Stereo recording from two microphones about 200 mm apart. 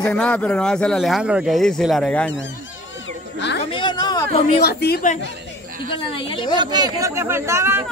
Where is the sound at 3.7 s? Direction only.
25° left (ahead or behind).